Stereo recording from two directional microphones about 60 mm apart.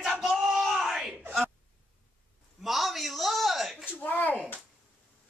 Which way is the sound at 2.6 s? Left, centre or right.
Centre.